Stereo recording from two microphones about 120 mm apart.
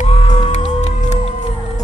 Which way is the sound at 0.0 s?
60° left (ahead or behind).